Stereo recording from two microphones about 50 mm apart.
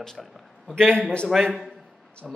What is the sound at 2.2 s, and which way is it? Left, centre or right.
Speech, centre.